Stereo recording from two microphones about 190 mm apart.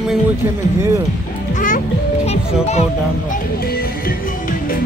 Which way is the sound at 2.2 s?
35° left (ahead or behind).